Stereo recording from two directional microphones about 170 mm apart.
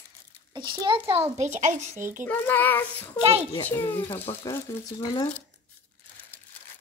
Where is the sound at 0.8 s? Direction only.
30° right (ahead or behind).